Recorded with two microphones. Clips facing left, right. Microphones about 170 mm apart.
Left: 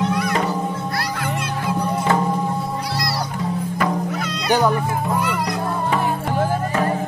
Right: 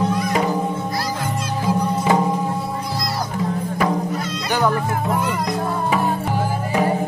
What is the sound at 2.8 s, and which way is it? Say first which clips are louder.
Music: even; 75° left (ahead or behind).